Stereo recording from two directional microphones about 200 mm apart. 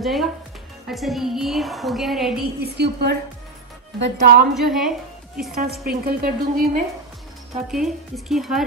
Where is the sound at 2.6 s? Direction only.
55° right (ahead or behind).